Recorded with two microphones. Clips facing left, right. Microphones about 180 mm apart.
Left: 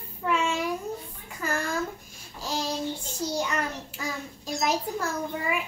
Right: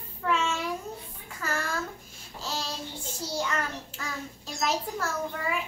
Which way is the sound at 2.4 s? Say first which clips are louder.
Left 4 dB; 15° left (ahead or behind).